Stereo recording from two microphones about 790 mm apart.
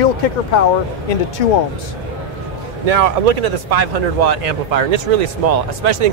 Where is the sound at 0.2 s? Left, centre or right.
Left.